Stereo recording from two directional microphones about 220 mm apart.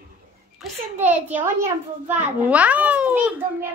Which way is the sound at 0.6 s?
Centre (ahead or behind).